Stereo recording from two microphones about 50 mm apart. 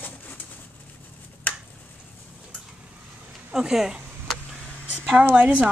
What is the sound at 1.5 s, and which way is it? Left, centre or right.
Finger snapping, left.